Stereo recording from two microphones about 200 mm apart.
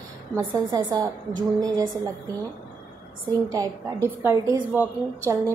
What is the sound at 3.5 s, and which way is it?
A woman's voice, 15° right (ahead or behind).